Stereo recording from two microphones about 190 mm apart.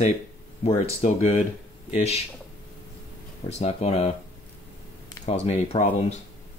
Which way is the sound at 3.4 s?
35° left (ahead or behind).